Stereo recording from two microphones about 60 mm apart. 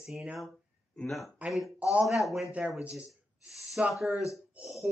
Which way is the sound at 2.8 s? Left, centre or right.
Right.